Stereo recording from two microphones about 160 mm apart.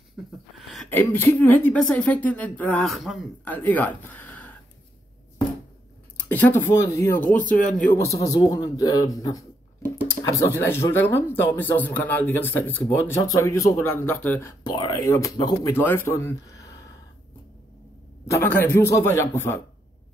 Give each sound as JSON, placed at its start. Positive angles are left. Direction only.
{"t": 0.6, "sound": "a sound", "side_deg": 0}
{"t": 0.8, "sound": "a woman's voice", "side_deg": 15}
{"t": 3.4, "sound": "speech", "side_deg": 10}
{"t": 6.2, "sound": "a woman's voice", "side_deg": 10}
{"t": 14.6, "sound": "speech", "side_deg": 25}
{"t": 18.2, "sound": "a woman's voice", "side_deg": 15}